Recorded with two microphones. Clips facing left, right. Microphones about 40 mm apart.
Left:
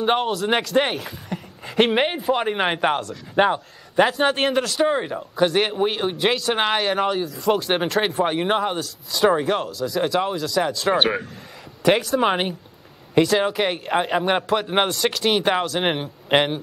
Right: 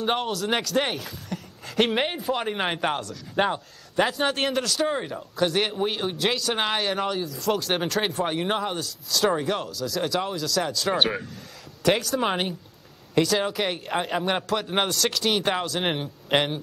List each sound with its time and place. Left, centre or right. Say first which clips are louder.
0.0 s speech: left 5 dB; centre